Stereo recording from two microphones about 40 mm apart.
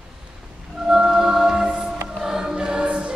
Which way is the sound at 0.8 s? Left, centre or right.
Centre.